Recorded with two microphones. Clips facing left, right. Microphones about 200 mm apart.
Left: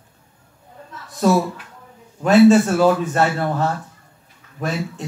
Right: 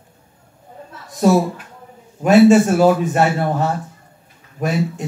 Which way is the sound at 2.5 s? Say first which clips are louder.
Right 2 dB; 15° right (ahead or behind).